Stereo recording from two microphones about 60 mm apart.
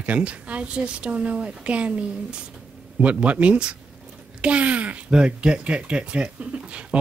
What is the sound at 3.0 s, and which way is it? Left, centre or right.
Speech, right.